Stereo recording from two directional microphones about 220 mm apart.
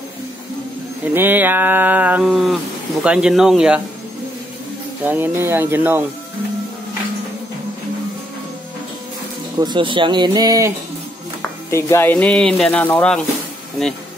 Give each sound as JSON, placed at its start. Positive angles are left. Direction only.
{"t": 1.0, "sound": "speech", "side_deg": -10}
{"t": 5.0, "sound": "speech", "side_deg": -10}
{"t": 9.6, "sound": "speech", "side_deg": -20}
{"t": 11.7, "sound": "speech", "side_deg": 10}